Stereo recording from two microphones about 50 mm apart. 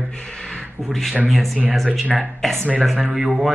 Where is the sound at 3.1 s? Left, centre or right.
Centre.